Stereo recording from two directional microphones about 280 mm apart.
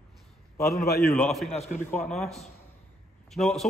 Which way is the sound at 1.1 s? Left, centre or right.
Centre.